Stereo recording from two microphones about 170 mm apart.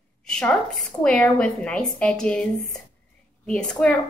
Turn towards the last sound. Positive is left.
turn(degrees=5)  # may be behind; listen again after turning